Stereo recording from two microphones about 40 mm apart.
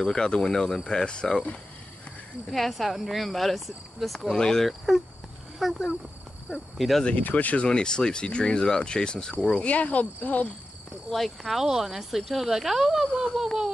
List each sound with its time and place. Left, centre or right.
0.0 s speech: centre
2.5 s speech: centre
4.3 s speech: centre
4.6 s speech: centre
7.1 s speech: left
7.6 s speech: left
11.1 s speech: centre
11.6 s speech: centre
13.3 s a sound: centre